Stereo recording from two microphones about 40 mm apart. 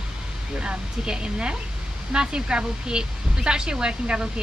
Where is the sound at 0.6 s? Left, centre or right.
Right.